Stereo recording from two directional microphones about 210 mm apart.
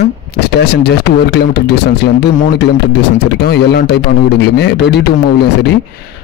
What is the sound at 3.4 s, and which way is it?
A man's voice, 50° left (ahead or behind).